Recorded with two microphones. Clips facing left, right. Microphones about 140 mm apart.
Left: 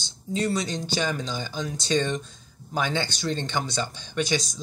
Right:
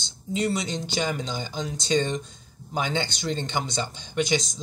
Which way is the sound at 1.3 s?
20° right (ahead or behind).